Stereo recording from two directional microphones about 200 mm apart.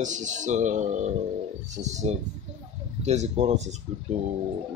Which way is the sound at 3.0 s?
35° right (ahead or behind).